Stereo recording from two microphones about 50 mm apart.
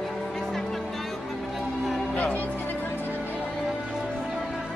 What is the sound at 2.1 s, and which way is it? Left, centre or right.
Music, left.